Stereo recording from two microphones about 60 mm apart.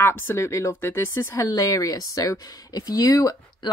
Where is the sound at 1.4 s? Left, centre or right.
Left.